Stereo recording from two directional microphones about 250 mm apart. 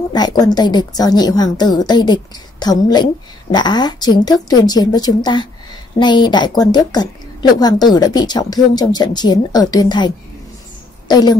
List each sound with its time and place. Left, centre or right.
0.1 s a woman's voice: centre